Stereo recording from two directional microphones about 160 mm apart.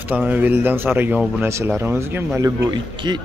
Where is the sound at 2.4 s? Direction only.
25° right (ahead or behind).